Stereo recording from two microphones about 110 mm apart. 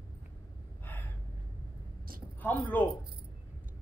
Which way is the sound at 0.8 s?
15° left (ahead or behind).